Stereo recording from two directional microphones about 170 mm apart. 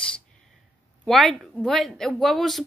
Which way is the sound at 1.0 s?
Centre (ahead or behind).